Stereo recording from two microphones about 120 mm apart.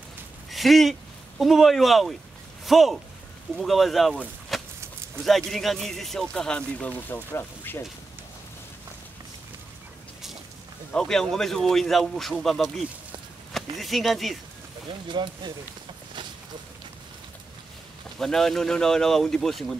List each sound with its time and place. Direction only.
0.5 s a man's voice: centre (ahead or behind)
4.5 s a sound: centre (ahead or behind)
5.2 s speech: centre (ahead or behind); by 7.8 s 20° left (ahead or behind)
10.9 s a man's voice: 5° left (ahead or behind)
15.0 s speech: 40° right (ahead or behind)
18.2 s a man's voice: 5° left (ahead or behind)